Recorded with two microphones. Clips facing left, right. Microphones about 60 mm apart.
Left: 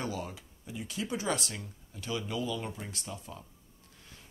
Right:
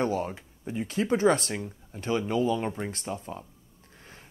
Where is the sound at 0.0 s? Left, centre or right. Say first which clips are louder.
Right 9 dB; right.